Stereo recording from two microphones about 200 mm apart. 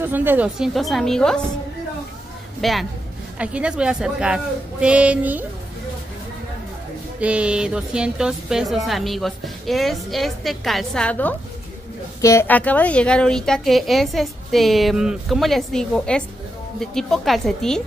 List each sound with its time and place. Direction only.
0.0 s speech: 10° right (ahead or behind)
2.6 s speech: centre (ahead or behind)
7.2 s speech: 5° right (ahead or behind)